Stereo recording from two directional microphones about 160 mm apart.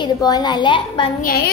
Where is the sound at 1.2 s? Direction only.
70° left (ahead or behind).